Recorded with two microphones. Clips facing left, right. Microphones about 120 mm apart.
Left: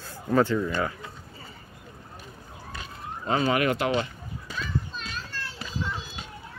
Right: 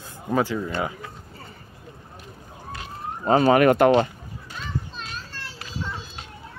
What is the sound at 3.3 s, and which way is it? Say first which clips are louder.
Speech: right 8 dB; 40° right (ahead or behind).